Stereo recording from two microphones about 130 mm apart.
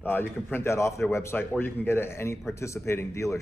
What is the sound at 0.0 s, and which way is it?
A man's voice, 15° left (ahead or behind).